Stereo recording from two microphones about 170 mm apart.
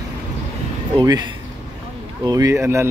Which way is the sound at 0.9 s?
25° right (ahead or behind).